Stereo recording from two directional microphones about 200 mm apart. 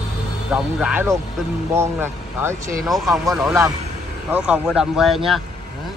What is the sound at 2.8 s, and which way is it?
Speech, centre (ahead or behind).